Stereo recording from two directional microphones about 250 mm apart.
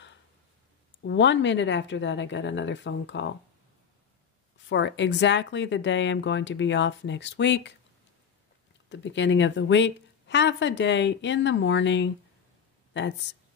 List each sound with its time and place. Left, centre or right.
1.0 s a woman's voice: left
4.6 s a woman's voice: left
8.8 s a woman's voice: left